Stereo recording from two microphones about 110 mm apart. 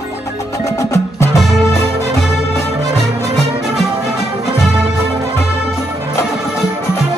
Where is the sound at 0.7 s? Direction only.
25° left (ahead or behind).